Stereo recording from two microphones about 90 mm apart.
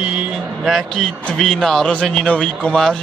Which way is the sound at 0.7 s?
5° left (ahead or behind).